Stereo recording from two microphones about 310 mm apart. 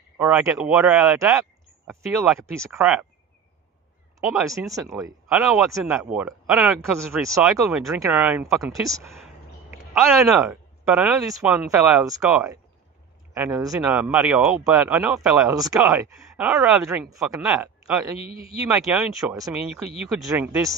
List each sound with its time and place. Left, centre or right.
0.2 s speech: centre
4.2 s speech: centre
18.2 s speech: centre
18.7 s speech: centre